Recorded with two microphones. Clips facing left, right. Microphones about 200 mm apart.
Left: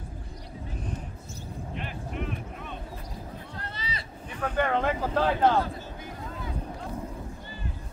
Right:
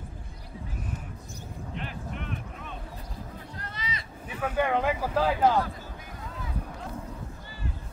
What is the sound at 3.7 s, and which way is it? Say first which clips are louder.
Vehicle: right 2 dB; 30° left (ahead or behind).